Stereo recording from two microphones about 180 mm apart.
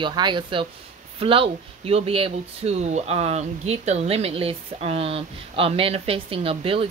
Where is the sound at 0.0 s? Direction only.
25° right (ahead or behind).